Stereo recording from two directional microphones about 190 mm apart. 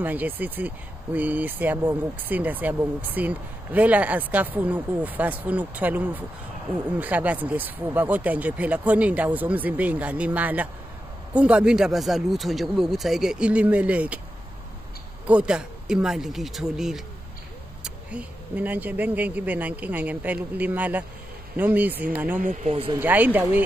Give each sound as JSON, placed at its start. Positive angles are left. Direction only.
{"t": 0.0, "sound": "speech", "side_deg": -10}
{"t": 15.2, "sound": "speech", "side_deg": -5}
{"t": 22.4, "sound": "speech", "side_deg": -40}
{"t": 22.9, "sound": "speech", "side_deg": -10}